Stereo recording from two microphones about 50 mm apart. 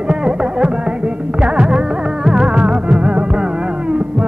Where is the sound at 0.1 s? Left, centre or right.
Centre.